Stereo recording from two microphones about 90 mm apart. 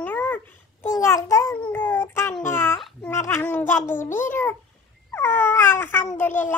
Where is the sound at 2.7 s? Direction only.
5° left (ahead or behind).